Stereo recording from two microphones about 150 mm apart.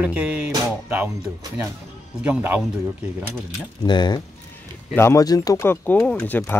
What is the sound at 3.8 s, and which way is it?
Speech, 30° left (ahead or behind).